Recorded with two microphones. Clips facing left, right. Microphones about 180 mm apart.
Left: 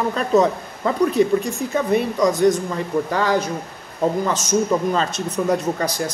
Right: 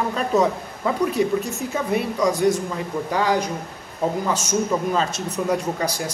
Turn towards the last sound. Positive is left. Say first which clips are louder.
# left 2 dB
turn(degrees=-10)  # may be behind; listen again after turning